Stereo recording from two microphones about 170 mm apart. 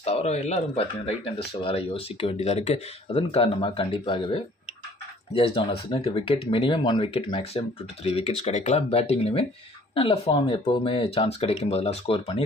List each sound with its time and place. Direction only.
0.0 s speech: 40° left (ahead or behind)